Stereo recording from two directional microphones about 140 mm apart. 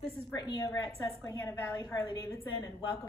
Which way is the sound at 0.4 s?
25° left (ahead or behind).